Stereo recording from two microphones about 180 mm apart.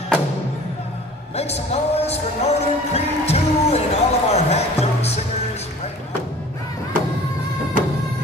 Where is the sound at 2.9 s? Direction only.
35° left (ahead or behind).